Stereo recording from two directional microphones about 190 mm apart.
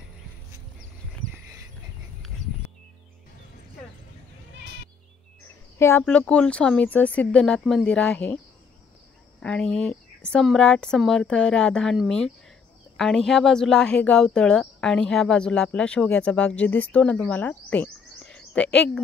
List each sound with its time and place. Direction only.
5.8 s speech: 10° left (ahead or behind)
9.4 s speech: 5° left (ahead or behind)